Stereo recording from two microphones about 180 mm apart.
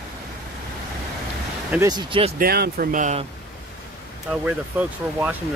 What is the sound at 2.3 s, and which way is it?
Speech, 60° right (ahead or behind).